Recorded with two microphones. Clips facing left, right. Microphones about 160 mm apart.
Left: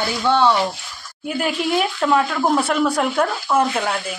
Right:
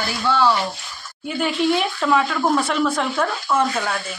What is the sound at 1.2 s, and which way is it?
A woman's voice, 5° left (ahead or behind).